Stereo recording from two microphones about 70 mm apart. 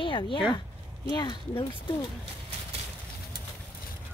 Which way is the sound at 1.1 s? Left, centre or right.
Left.